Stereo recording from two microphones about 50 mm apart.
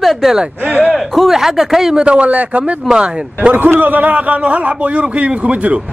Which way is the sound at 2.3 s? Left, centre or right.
Right.